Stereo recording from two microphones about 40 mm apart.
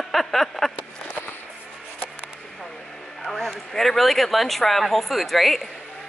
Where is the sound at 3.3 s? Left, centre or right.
Centre.